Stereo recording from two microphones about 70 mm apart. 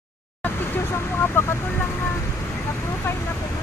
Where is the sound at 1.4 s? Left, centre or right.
Left.